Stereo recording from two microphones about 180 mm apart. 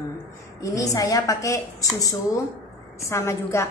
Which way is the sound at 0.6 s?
20° left (ahead or behind).